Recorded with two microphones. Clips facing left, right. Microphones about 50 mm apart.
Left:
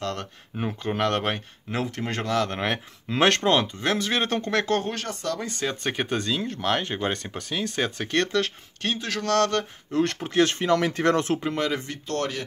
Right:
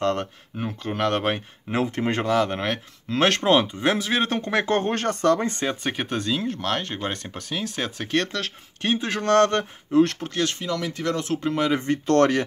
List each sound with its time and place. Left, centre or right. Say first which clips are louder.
0.0 s speech: right 7 dB; right
0.6 s speech: left 1 dB; centre
1.0 s speech: right 3 dB; centre
1.7 s speech: right 5 dB; centre
2.6 s speech: even; centre
4.7 s speech: right 4 dB; right
5.9 s speech: even; centre
8.8 s speech: right 4 dB; right
9.8 s speech: right 7 dB; centre
10.3 s speech: left 5 dB; left
11.4 s speech: right 3 dB; centre
12.1 s speech: right 10 dB; right